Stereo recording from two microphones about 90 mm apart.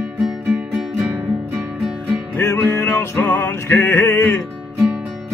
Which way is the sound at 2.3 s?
25° left (ahead or behind).